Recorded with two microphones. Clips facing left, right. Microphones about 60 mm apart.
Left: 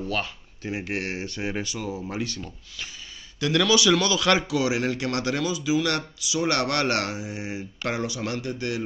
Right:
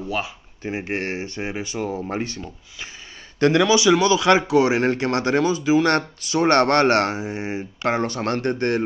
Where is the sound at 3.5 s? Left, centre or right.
Right.